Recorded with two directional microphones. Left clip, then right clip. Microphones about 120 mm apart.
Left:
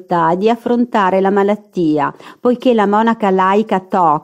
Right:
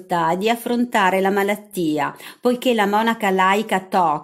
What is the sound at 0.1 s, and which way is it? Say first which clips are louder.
Speech: left 6 dB; 40° left (ahead or behind).